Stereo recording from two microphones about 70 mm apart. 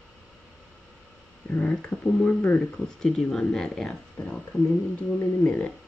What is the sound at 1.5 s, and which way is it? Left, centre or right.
Speech, left.